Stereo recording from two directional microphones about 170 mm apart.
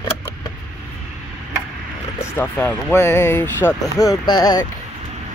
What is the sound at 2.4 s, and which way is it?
Speech, 10° left (ahead or behind).